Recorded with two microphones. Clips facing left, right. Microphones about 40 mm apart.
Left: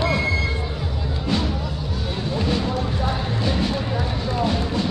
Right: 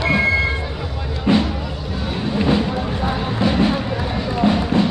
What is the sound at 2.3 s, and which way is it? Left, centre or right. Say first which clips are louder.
Music: right 5 dB; right.